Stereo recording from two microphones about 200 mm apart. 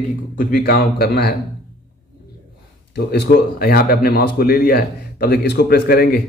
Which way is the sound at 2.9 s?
55° left (ahead or behind).